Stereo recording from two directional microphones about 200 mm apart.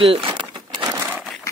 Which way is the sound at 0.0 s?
25° right (ahead or behind).